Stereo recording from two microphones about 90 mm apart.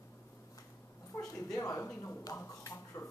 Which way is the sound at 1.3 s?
35° left (ahead or behind).